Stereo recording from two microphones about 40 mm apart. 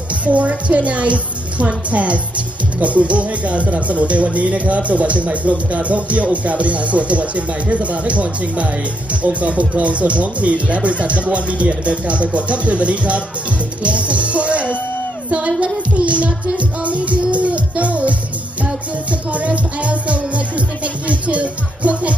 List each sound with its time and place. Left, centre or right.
0.1 s a woman's voice: right
13.8 s music: right
16.0 s speech: right
16.5 s music: right
19.3 s speech: right